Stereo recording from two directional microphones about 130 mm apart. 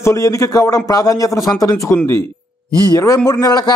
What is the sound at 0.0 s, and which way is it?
A man's voice, 25° left (ahead or behind).